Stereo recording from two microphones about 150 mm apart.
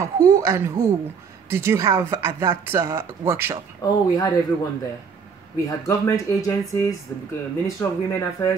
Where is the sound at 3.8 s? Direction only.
25° left (ahead or behind).